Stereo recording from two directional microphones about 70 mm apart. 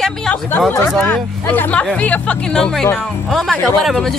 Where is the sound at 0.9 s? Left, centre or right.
Centre.